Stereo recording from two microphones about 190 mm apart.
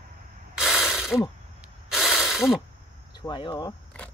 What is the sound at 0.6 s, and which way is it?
Mechanisms, 5° right (ahead or behind).